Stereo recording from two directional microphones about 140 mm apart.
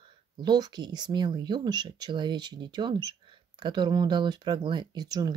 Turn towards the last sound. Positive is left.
turn(degrees=-30)  # may be behind; listen again after turning